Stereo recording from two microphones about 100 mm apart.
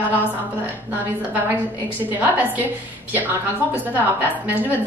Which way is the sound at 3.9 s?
15° right (ahead or behind).